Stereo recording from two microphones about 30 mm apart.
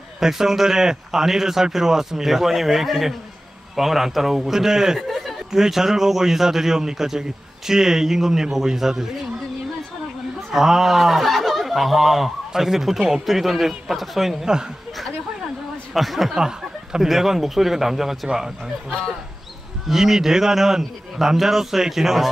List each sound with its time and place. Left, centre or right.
0.2 s a man's voice: centre
10.5 s a man's voice: centre
14.4 s speech: right
15.9 s a man's voice: centre
16.3 s speech: centre
19.9 s speech: centre